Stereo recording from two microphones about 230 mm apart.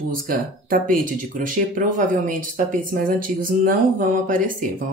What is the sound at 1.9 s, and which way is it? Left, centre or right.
Speech, right.